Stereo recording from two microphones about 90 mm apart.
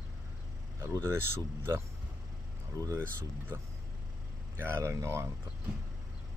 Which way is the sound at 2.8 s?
35° left (ahead or behind).